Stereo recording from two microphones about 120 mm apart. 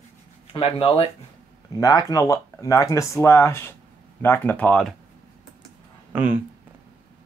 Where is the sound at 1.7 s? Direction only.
30° left (ahead or behind); by 4.9 s 10° left (ahead or behind).